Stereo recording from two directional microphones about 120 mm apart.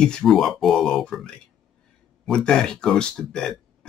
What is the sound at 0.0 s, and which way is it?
Speech, 5° left (ahead or behind).